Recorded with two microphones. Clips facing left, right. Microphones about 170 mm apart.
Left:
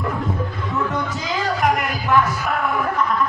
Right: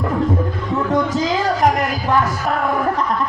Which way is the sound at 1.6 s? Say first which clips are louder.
Right 3 dB; 35° right (ahead or behind).